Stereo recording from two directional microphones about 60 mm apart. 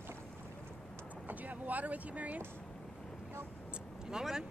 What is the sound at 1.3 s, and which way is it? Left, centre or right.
Vehicle, right.